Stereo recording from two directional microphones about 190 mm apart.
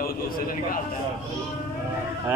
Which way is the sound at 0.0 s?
50° left (ahead or behind).